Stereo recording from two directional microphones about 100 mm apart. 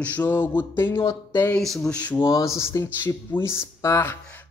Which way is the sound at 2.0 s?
20° left (ahead or behind).